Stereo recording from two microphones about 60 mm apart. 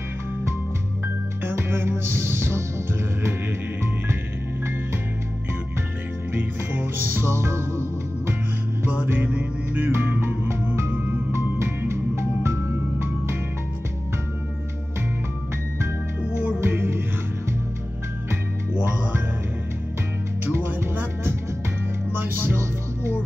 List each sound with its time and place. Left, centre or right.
1.0 s music: right
6.7 s music: right
7.2 s music: right
8.8 s music: right
9.8 s music: right
11.9 s music: right
16.2 s music: right
20.4 s music: right